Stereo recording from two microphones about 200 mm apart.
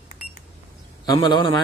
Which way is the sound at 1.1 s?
20° left (ahead or behind).